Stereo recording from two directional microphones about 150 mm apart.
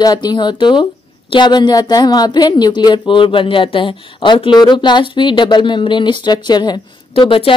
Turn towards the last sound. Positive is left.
turn(degrees=35)  # may be behind; listen again after turning